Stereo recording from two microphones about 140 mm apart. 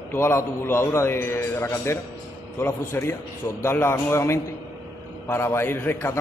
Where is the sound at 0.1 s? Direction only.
15° left (ahead or behind).